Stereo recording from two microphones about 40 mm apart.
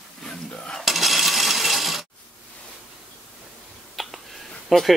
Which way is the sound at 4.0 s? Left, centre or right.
Centre.